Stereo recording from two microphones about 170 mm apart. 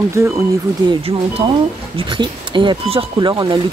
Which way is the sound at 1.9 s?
30° right (ahead or behind).